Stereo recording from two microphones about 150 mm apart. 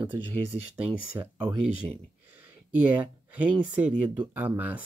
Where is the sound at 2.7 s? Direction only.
10° right (ahead or behind).